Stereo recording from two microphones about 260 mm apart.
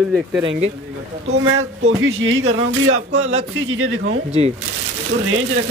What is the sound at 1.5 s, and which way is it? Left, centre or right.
A man's voice, right.